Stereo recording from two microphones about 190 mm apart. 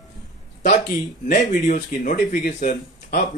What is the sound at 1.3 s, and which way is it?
Speech, 45° left (ahead or behind).